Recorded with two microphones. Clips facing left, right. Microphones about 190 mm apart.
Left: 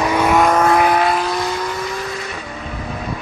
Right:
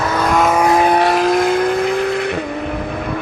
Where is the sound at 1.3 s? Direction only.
55° right (ahead or behind).